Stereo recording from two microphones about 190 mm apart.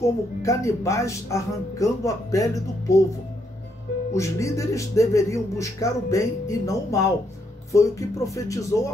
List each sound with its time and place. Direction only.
0.0 s speech: 15° left (ahead or behind)
4.1 s speech: 15° left (ahead or behind)